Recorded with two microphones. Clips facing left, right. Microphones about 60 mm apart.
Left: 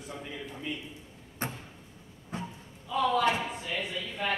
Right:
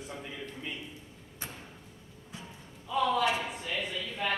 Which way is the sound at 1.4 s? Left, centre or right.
Left.